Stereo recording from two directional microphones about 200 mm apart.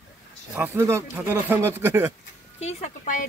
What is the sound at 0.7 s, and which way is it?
Speech, 15° right (ahead or behind).